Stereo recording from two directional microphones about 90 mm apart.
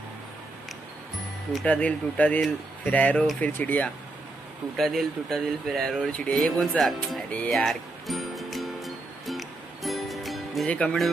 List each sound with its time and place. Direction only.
1.6 s speech: 15° left (ahead or behind)
4.7 s speech: 5° left (ahead or behind)
7.2 s speech: 15° left (ahead or behind)
7.5 s music: centre (ahead or behind)
10.7 s speech: 15° left (ahead or behind)